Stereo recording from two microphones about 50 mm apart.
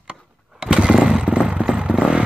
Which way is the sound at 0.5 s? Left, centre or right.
Centre.